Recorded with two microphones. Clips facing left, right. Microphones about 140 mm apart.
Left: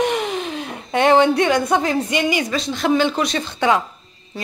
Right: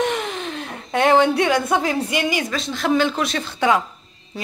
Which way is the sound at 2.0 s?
Centre (ahead or behind).